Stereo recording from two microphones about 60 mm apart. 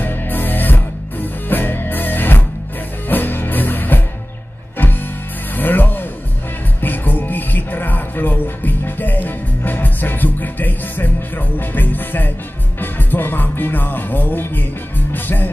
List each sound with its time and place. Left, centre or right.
0.0 s music: left
5.6 s music: left